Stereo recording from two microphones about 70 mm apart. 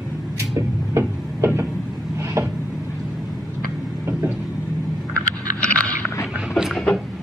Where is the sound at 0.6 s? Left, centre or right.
Right.